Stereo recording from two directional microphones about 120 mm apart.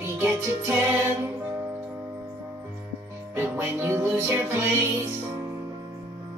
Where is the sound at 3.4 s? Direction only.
20° right (ahead or behind).